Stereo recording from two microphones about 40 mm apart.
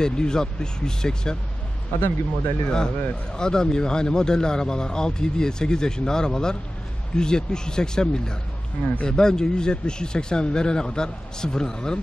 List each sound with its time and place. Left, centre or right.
0.0 s speech: centre
2.0 s speech: left
2.6 s speech: centre